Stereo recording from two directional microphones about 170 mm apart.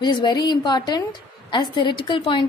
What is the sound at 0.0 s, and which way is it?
A woman's voice, 25° left (ahead or behind).